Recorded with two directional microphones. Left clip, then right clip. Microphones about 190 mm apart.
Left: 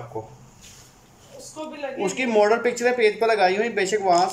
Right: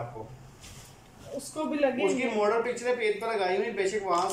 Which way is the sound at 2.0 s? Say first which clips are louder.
Left 7 dB; 50° left (ahead or behind).